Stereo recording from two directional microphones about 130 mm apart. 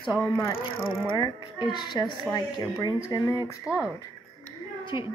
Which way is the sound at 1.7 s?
35° left (ahead or behind).